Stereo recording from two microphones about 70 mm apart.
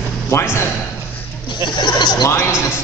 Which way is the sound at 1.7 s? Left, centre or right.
Left.